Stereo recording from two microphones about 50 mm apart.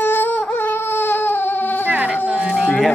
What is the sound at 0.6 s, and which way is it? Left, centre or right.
Baby cry, left.